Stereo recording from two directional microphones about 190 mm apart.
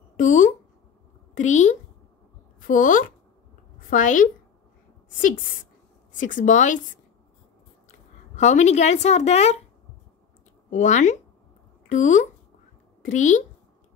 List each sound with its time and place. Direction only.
0.2 s a woman's voice: 40° left (ahead or behind)
6.1 s speech: 45° left (ahead or behind)
8.4 s a woman's voice: 40° left (ahead or behind)
10.7 s a woman's voice: 40° left (ahead or behind)